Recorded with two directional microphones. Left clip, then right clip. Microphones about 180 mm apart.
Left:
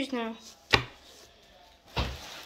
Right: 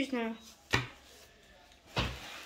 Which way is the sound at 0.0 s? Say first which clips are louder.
Left 2 dB; centre (ahead or behind).